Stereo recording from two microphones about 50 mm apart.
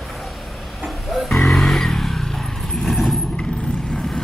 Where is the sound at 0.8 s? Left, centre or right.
Centre.